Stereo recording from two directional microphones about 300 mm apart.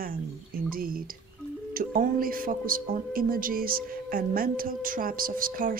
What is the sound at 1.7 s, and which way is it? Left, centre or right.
Speech, right.